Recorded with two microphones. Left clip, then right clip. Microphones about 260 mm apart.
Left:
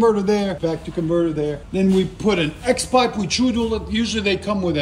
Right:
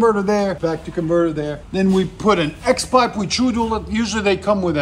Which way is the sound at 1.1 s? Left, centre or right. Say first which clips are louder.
Right 2 dB; centre.